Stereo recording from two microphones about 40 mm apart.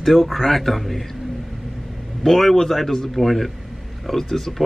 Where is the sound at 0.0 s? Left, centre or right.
Centre.